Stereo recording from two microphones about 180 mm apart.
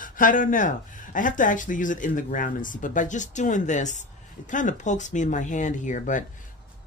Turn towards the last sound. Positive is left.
turn(degrees=45)  # may be behind; listen again after turning